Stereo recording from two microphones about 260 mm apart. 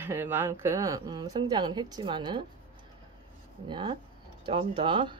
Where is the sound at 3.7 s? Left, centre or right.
Centre.